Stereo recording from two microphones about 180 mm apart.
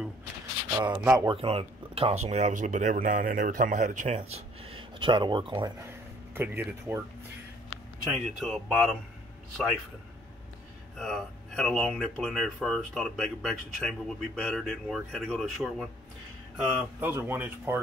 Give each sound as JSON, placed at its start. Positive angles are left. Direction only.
{"t": 1.0, "sound": "speech", "side_deg": -20}
{"t": 1.3, "sound": "speech", "side_deg": -30}
{"t": 6.3, "sound": "speech", "side_deg": -10}
{"t": 8.1, "sound": "speech", "side_deg": 0}
{"t": 11.0, "sound": "speech", "side_deg": 0}
{"t": 16.5, "sound": "speech", "side_deg": -10}